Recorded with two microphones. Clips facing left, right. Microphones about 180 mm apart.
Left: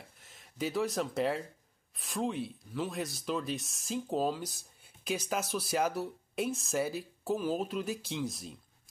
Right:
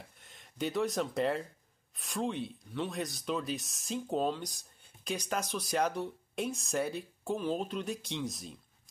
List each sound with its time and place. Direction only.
0.2 s speech: centre (ahead or behind)